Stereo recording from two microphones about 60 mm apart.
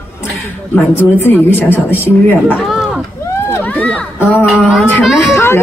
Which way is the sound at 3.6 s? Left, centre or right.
Left.